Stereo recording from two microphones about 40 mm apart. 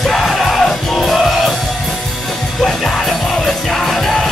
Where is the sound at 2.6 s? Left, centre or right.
Centre.